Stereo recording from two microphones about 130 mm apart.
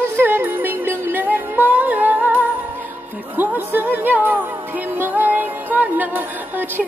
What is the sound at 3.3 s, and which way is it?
Speech, 15° right (ahead or behind).